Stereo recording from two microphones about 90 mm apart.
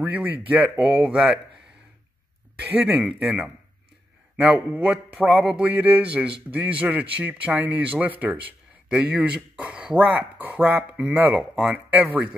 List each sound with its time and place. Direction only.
0.0 s a man's voice: 15° right (ahead or behind)
2.8 s a man's voice: 15° right (ahead or behind)
4.4 s a man's voice: 10° right (ahead or behind)